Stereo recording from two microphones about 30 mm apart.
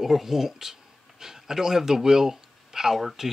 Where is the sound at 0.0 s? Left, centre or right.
Centre.